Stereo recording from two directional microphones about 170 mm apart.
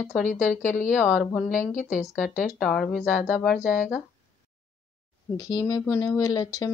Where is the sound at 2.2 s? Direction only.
Centre (ahead or behind).